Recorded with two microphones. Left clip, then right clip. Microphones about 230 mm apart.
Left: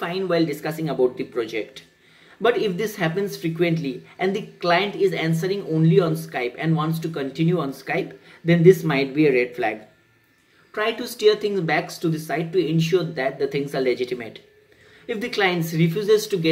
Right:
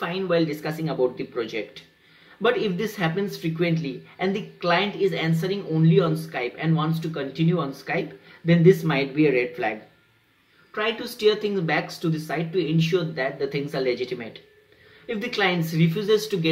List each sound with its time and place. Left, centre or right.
0.0 s speech: centre